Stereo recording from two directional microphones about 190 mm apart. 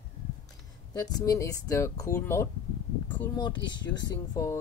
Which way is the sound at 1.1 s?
15° left (ahead or behind).